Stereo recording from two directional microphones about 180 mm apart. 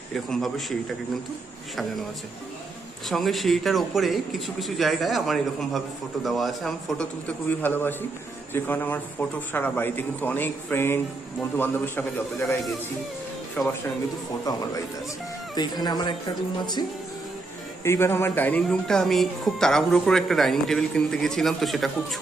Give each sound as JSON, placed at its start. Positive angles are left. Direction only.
{"t": 0.1, "sound": "speech", "side_deg": 0}
{"t": 3.1, "sound": "speech", "side_deg": 0}
{"t": 13.6, "sound": "speech", "side_deg": 10}
{"t": 15.5, "sound": "speech", "side_deg": 25}
{"t": 17.8, "sound": "speech", "side_deg": 15}